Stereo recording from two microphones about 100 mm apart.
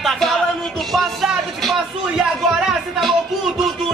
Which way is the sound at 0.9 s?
Centre (ahead or behind).